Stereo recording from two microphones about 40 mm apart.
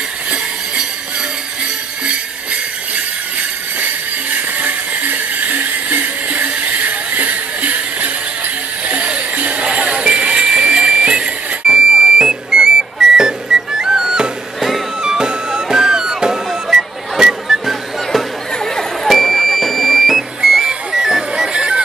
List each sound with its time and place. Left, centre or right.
4.6 s music: right
8.8 s music: right
9.3 s jingle bell: right
9.6 s a sound: right
13.1 s music: centre
18.5 s a sound: centre
19.0 s a sound: centre
20.9 s music: centre
21.5 s music: right